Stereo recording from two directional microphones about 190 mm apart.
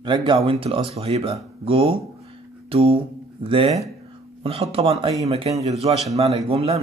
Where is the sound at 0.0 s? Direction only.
25° right (ahead or behind).